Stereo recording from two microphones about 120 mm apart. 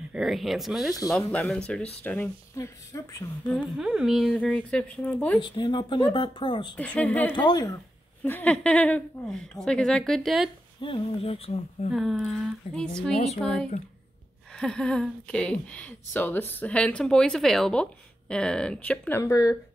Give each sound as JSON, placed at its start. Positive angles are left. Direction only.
{"t": 0.1, "sound": "a woman's voice", "side_deg": 0}
{"t": 2.0, "sound": "speech", "side_deg": 20}
{"t": 3.4, "sound": "speech", "side_deg": 5}
{"t": 3.8, "sound": "a woman's voice", "side_deg": -5}
{"t": 5.4, "sound": "speech", "side_deg": 40}
{"t": 6.8, "sound": "speech", "side_deg": 10}
{"t": 7.3, "sound": "speech", "side_deg": 35}
{"t": 8.2, "sound": "a woman's voice", "side_deg": 10}
{"t": 10.8, "sound": "speech", "side_deg": 50}
{"t": 11.9, "sound": "a woman's voice", "side_deg": 0}